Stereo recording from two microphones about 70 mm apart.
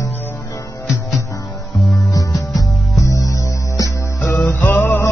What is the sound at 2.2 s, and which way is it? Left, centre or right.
Music, left.